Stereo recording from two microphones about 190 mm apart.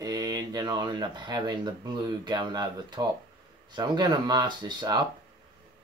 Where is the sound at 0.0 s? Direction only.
20° right (ahead or behind).